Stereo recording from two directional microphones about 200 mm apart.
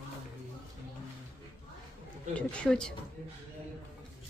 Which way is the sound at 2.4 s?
5° left (ahead or behind).